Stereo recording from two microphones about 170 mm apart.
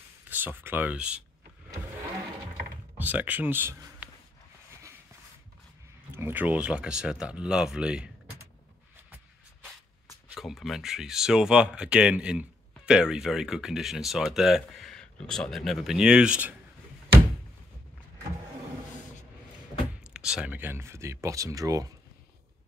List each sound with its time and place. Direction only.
0.3 s speech: 10° right (ahead or behind)
3.0 s speech: 10° right (ahead or behind)
6.1 s speech: 10° right (ahead or behind)
10.3 s speech: centre (ahead or behind)
20.0 s speech: 5° right (ahead or behind); by 21.9 s 20° right (ahead or behind)